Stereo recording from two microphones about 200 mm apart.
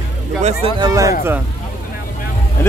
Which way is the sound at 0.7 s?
15° right (ahead or behind).